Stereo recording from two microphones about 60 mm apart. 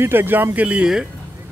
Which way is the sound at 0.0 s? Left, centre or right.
Right.